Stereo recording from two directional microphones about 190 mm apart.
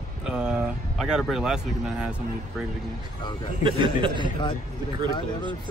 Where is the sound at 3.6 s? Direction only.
25° right (ahead or behind).